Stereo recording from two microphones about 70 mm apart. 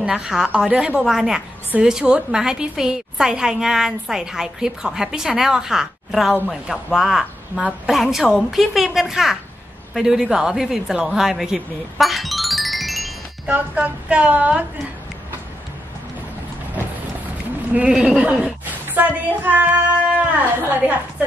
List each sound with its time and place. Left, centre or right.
0.0 s a woman's voice: centre
13.5 s speech: right
17.7 s a woman's voice: centre
18.9 s speech: right